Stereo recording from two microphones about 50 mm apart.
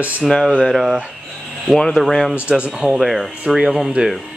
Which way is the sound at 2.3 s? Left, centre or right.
Right.